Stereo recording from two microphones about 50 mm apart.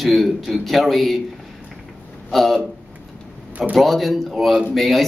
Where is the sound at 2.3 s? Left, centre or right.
Centre.